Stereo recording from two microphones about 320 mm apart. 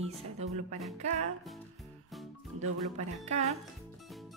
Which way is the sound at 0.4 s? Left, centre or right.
Centre.